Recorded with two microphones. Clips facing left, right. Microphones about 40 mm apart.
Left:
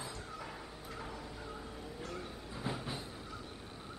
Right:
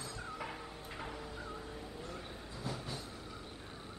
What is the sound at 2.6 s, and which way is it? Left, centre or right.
Vehicle, left.